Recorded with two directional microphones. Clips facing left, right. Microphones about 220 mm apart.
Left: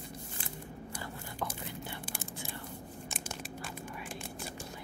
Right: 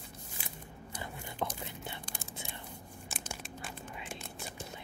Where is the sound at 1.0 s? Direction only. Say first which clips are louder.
Right 3 dB; 20° right (ahead or behind).